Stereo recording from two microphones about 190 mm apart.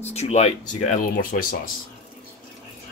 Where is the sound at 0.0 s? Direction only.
35° left (ahead or behind).